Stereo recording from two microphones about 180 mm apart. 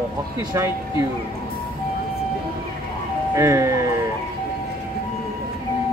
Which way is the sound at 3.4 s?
15° right (ahead or behind).